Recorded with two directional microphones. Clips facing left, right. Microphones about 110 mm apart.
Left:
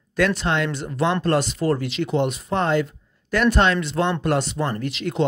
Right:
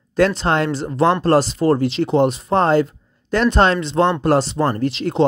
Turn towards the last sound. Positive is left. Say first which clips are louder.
# right 6 dB
turn(degrees=-30)  # may be behind; listen again after turning